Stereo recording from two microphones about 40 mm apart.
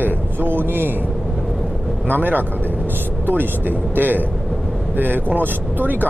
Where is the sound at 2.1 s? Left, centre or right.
Right.